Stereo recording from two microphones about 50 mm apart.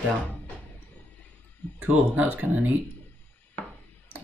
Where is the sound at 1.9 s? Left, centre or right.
Right.